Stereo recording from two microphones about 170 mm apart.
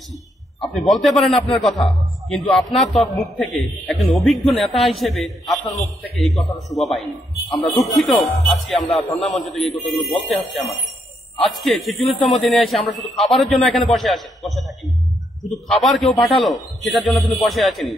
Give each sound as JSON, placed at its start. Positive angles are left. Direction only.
{"t": 0.6, "sound": "a man's voice", "side_deg": 0}